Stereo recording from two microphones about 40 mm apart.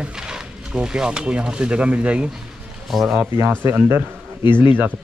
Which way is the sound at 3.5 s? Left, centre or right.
Right.